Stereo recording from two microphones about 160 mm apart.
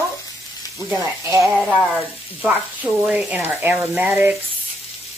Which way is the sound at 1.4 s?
Centre (ahead or behind).